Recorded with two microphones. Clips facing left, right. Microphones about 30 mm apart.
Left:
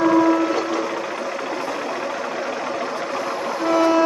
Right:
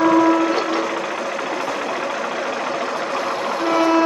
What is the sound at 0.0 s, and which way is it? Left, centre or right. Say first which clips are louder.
Music: right 2 dB; right.